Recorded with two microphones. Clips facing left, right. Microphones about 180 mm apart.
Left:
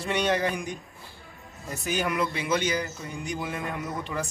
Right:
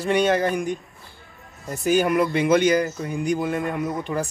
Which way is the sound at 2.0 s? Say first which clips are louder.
Right 8 dB; 45° right (ahead or behind).